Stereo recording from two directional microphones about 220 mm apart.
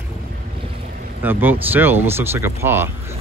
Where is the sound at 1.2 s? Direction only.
10° right (ahead or behind).